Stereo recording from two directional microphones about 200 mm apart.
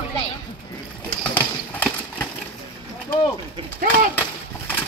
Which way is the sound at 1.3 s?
10° left (ahead or behind).